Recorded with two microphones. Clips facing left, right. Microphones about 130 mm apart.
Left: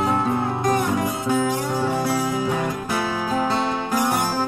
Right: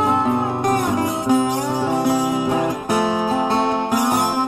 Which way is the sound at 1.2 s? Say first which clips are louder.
Right 6 dB; 20° right (ahead or behind).